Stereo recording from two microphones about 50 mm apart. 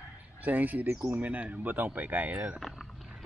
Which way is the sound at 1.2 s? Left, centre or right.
Right.